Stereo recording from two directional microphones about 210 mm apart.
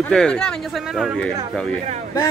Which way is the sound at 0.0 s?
5° left (ahead or behind).